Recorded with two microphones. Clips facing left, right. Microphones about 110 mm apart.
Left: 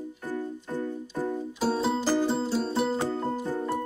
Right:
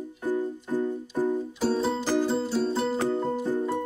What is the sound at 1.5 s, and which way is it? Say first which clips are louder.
Music: right 1 dB; 5° left (ahead or behind).